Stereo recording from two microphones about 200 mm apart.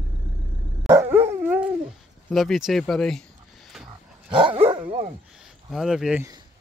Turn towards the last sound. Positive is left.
turn(degrees=-5)  # may be behind; listen again after turning